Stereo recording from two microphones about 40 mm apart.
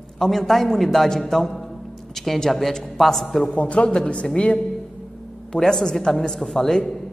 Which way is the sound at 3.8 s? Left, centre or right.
Left.